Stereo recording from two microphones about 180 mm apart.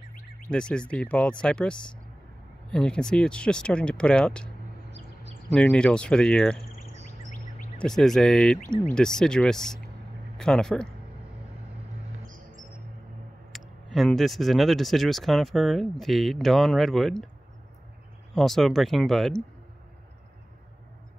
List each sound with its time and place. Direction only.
0.5 s speech: 5° left (ahead or behind)
5.5 s speech: 5° left (ahead or behind)
7.8 s speech: centre (ahead or behind)
13.5 s speech: centre (ahead or behind)
18.3 s speech: centre (ahead or behind)